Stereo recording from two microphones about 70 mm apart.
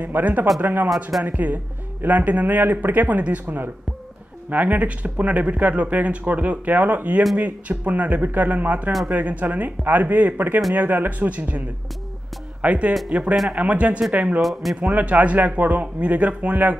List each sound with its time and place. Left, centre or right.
0.0 s speech: right
12.6 s speech: centre
14.4 s speech: centre
14.8 s speech: right